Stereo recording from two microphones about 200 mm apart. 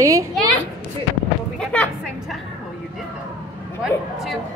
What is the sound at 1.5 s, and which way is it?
Speech, 5° left (ahead or behind).